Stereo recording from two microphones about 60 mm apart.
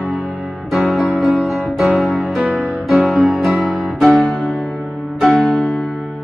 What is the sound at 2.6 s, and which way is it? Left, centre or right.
Music, centre.